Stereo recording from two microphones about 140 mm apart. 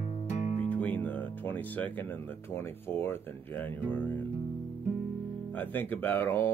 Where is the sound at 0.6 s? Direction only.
10° left (ahead or behind).